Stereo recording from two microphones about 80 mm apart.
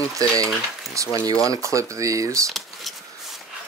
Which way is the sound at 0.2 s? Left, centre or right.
Right.